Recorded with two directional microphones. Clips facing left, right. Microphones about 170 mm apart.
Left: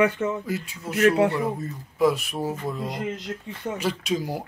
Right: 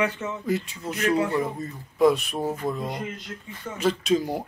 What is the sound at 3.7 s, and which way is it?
Speech, 10° left (ahead or behind).